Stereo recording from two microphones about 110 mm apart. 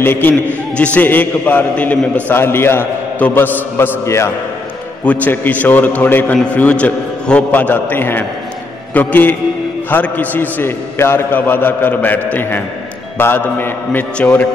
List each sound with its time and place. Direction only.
0.0 s a man's voice: 20° left (ahead or behind)
5.0 s a man's voice: 15° left (ahead or behind)